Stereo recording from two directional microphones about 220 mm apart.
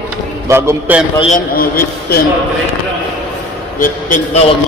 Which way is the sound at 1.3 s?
40° left (ahead or behind).